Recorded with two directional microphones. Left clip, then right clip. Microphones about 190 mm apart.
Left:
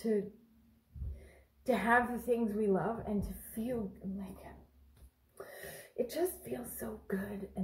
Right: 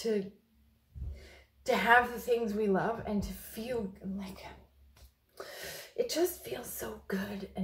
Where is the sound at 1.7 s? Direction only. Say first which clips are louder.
Right 4 dB; centre (ahead or behind).